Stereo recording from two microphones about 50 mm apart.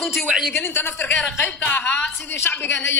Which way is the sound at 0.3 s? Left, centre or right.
Centre.